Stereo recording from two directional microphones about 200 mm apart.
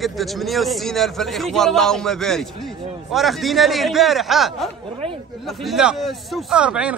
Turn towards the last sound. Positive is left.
turn(degrees=-5)  # may be behind; listen again after turning